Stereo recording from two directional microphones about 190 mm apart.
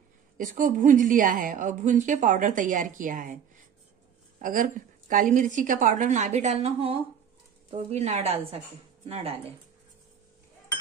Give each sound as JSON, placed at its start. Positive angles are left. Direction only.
{"t": 0.4, "sound": "a woman's voice", "side_deg": -45}
{"t": 4.4, "sound": "a woman's voice", "side_deg": -45}